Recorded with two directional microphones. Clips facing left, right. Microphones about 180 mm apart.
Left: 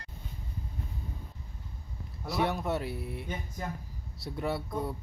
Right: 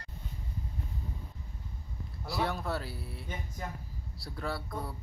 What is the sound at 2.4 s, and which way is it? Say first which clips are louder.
Speech: left 4 dB; 20° left (ahead or behind).